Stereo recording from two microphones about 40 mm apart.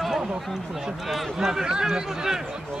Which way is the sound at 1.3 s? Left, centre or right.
Centre.